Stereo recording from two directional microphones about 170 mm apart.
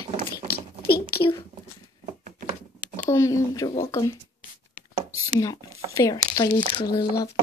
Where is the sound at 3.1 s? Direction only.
20° left (ahead or behind).